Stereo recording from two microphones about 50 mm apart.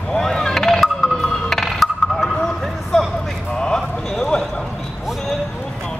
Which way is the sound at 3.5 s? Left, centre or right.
Centre.